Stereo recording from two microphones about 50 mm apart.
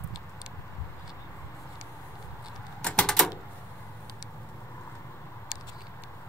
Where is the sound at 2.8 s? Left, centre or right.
Centre.